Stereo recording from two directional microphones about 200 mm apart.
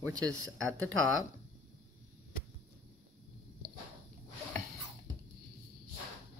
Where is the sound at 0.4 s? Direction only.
90° right.